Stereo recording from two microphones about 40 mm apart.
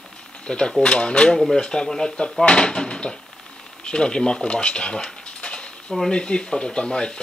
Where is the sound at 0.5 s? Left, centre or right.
Left.